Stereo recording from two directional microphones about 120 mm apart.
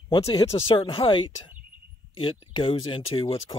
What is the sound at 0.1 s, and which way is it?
Speech, 30° left (ahead or behind).